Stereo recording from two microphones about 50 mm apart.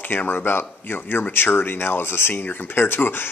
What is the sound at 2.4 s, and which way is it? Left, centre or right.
Speech, left.